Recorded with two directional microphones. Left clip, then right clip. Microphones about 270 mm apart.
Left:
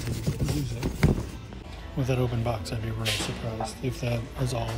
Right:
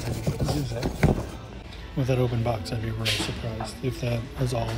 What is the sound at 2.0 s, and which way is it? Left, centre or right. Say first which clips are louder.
Speech: right 3 dB; centre.